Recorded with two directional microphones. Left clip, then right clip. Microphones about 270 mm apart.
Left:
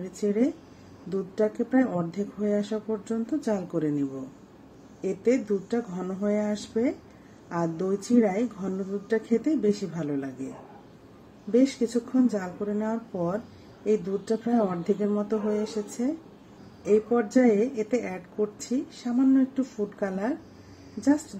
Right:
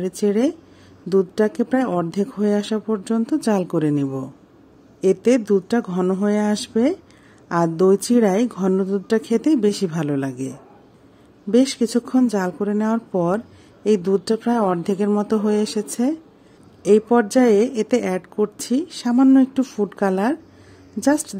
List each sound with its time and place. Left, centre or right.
0.2 s a woman's voice: right
11.5 s a woman's voice: right